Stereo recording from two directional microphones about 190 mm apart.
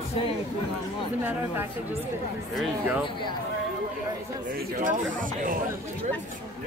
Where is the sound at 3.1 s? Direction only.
25° left (ahead or behind).